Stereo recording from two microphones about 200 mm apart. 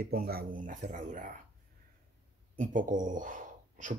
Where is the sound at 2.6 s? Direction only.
40° right (ahead or behind).